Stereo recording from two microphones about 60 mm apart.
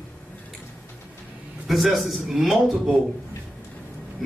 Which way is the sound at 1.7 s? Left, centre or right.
Centre.